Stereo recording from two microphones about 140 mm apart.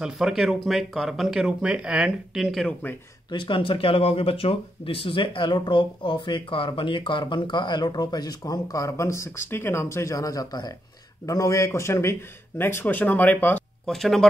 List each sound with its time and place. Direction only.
0.0 s speech: centre (ahead or behind)
3.3 s speech: 35° left (ahead or behind); by 14.2 s centre (ahead or behind)